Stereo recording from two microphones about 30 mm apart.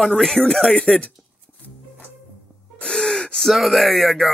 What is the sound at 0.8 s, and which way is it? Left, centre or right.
Speech, left.